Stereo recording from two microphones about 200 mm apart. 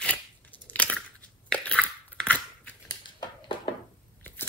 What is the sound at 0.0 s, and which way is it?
Scissors, 5° left (ahead or behind).